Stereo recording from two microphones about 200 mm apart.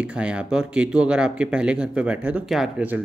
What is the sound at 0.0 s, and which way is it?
Speech, 5° right (ahead or behind).